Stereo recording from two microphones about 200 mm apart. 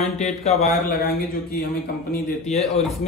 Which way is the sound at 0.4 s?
30° left (ahead or behind).